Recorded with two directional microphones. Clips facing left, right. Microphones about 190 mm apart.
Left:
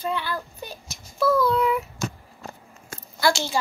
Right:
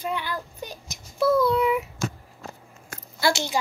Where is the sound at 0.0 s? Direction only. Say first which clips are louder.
Left 2 dB; 15° right (ahead or behind).